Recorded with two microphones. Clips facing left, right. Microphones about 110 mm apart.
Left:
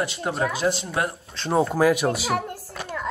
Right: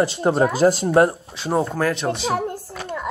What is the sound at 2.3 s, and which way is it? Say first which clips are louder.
Speech: right 3 dB; 30° right (ahead or behind).